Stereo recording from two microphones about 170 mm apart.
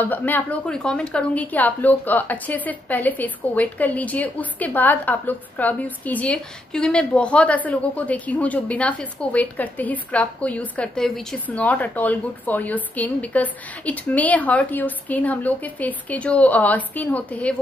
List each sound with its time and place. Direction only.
0.0 s a woman's voice: 10° left (ahead or behind)